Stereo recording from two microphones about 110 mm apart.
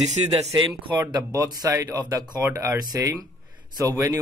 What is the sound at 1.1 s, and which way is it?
Speech, 35° right (ahead or behind).